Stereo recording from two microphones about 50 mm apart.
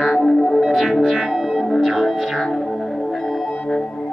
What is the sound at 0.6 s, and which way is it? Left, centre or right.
Music, centre.